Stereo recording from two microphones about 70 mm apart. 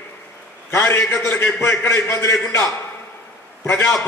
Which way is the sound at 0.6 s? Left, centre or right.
Left.